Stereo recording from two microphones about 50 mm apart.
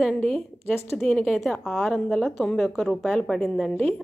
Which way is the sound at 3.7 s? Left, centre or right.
Left.